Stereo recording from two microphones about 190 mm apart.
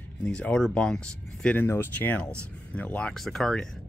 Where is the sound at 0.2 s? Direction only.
5° left (ahead or behind).